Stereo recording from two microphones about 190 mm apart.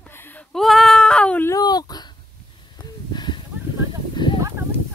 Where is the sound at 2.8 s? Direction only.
25° left (ahead or behind).